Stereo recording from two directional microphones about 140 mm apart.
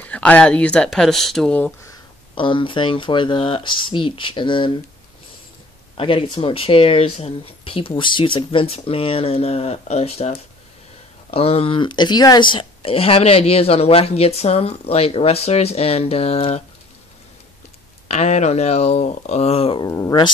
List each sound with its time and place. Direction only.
0.0 s speech: 10° left (ahead or behind)
2.3 s speech: 35° left (ahead or behind)
5.9 s speech: 40° left (ahead or behind)
18.0 s speech: 50° left (ahead or behind)
19.8 s speech: 25° left (ahead or behind)